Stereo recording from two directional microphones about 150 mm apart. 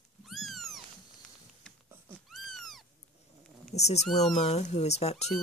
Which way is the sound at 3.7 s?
45° left (ahead or behind).